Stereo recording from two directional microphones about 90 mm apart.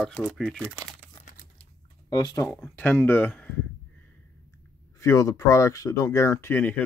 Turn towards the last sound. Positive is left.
turn(degrees=20)  # may be behind; listen again after turning